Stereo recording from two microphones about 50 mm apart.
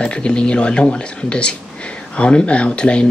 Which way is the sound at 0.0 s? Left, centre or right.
Centre.